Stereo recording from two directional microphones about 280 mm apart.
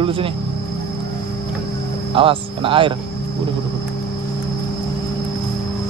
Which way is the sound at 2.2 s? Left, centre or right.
Centre.